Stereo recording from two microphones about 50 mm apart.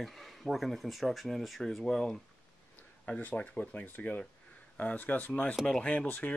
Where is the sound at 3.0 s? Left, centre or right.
Left.